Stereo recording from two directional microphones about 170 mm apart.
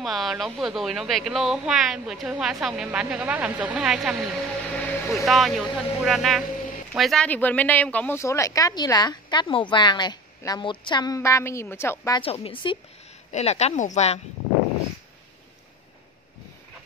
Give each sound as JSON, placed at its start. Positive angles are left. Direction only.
{"t": 0.0, "sound": "speech", "side_deg": 0}
{"t": 12.2, "sound": "speech", "side_deg": 35}